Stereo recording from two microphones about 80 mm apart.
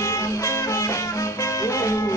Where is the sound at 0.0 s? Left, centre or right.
Left.